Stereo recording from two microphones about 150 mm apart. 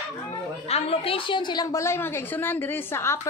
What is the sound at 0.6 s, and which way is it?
A woman's voice, 45° left (ahead or behind).